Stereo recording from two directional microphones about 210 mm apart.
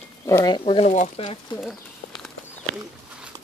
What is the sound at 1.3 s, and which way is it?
Speech, 20° left (ahead or behind).